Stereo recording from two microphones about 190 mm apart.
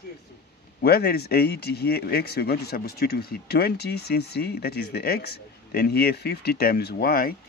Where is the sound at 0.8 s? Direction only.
55° left (ahead or behind).